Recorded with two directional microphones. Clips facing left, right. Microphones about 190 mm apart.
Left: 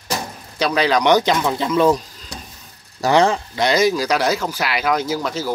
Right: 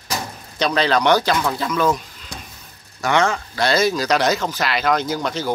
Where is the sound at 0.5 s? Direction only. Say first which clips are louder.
Left 1 dB; 10° left (ahead or behind); by 3.4 s 35° left (ahead or behind).